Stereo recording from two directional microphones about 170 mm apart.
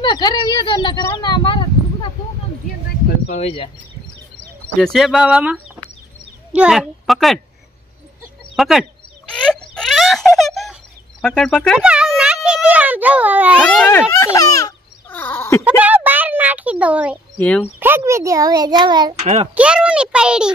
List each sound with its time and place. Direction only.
0.0 s speech: 25° left (ahead or behind)
3.3 s speech: 40° left (ahead or behind)
4.7 s a child's voice: centre (ahead or behind)
8.5 s a sound: centre (ahead or behind)
11.8 s a sound: 5° right (ahead or behind)
13.6 s a sound: 5° left (ahead or behind)
15.6 s a child's voice: 10° right (ahead or behind)
17.4 s speech: 10° left (ahead or behind)
17.7 s a child's voice: 10° right (ahead or behind)
19.1 s a child's voice: 40° right (ahead or behind)
19.5 s a child's voice: 5° right (ahead or behind)